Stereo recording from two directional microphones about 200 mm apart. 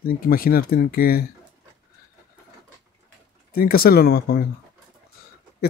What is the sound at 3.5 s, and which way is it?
Speech, 50° left (ahead or behind).